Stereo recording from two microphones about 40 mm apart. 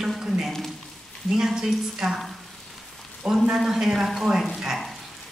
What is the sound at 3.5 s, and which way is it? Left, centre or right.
Speech, centre.